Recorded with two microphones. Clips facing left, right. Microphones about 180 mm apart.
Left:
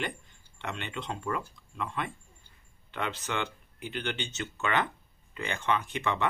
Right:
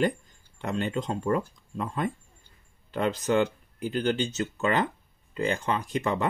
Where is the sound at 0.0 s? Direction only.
40° right (ahead or behind).